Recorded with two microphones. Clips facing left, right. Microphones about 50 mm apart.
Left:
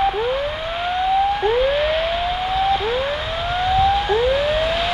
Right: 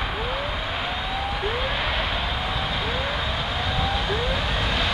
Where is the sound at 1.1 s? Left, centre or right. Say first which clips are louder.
Left 13 dB; centre.